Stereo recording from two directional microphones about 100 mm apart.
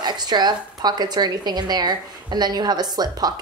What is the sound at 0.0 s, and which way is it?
A woman's voice, 45° right (ahead or behind).